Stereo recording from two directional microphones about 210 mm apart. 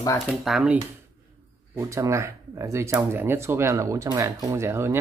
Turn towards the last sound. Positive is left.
turn(degrees=-10)  # may be behind; listen again after turning